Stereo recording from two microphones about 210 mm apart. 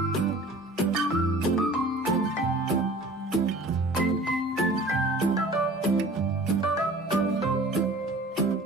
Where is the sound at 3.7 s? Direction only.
15° right (ahead or behind).